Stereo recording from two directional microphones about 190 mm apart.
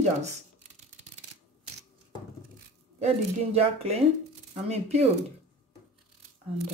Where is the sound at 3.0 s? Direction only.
35° right (ahead or behind).